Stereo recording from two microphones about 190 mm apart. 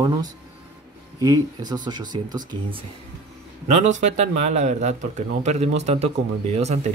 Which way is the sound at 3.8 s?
40° right (ahead or behind).